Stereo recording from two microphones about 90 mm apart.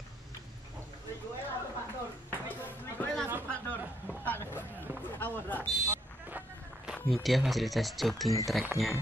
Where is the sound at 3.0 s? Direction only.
20° left (ahead or behind).